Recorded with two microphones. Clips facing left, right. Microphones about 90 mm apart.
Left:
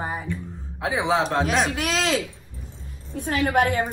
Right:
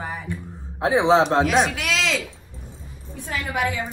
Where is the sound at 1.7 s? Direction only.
40° left (ahead or behind).